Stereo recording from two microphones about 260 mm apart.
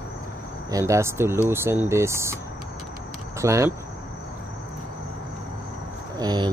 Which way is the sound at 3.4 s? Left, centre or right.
Centre.